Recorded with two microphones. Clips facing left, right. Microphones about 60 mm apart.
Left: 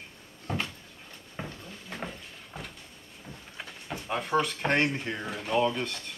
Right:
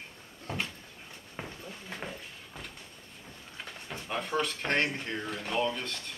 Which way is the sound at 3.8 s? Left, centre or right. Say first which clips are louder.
Left 3 dB; centre.